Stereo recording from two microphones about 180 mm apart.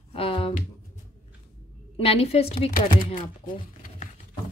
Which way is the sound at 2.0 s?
35° left (ahead or behind).